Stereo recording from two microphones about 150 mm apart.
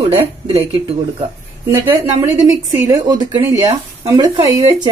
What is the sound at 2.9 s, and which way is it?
Speech, 30° right (ahead or behind).